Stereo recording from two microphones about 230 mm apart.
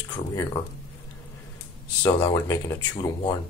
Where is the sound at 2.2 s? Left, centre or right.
Centre.